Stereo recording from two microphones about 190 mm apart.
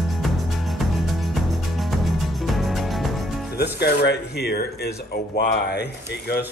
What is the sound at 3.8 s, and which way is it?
Speech, 60° left (ahead or behind).